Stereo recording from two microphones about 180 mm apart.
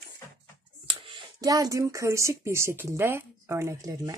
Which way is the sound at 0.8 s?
25° right (ahead or behind).